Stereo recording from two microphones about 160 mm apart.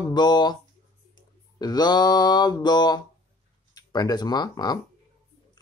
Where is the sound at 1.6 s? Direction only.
25° left (ahead or behind).